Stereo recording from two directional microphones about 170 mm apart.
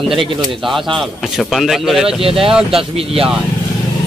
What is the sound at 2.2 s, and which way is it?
Speech, 35° right (ahead or behind).